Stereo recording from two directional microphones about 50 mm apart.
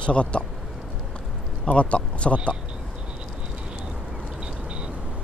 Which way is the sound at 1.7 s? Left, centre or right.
Left.